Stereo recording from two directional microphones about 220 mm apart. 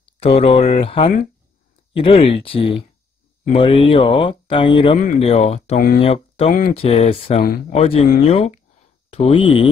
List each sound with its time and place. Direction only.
0.2 s speech: 25° left (ahead or behind)
6.5 s speech: 40° left (ahead or behind)
6.8 s speech: 25° left (ahead or behind)